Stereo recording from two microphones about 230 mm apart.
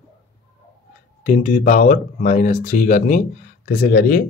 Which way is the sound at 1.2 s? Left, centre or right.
Left.